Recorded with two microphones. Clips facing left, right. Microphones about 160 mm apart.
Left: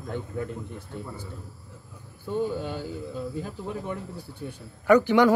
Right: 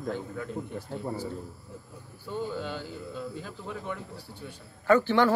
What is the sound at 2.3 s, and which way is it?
Speech, 15° left (ahead or behind).